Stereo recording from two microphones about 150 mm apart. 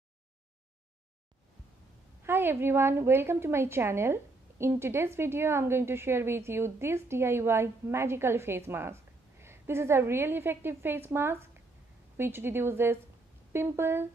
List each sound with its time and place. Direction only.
2.2 s a woman's voice: 15° right (ahead or behind)